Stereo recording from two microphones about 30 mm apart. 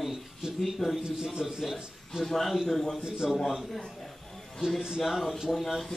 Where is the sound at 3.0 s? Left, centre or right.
Right.